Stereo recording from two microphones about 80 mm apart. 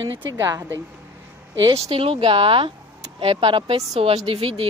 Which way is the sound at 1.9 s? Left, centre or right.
Right.